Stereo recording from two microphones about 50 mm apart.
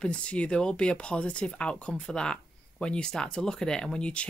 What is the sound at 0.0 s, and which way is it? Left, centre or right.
Speech, left.